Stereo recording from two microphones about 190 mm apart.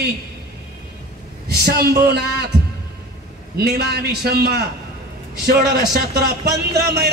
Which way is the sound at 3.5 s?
55° right (ahead or behind).